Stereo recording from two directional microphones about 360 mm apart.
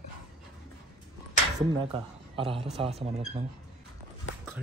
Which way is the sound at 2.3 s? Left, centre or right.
Centre.